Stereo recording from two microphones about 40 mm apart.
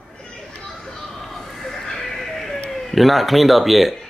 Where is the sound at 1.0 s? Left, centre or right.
Centre.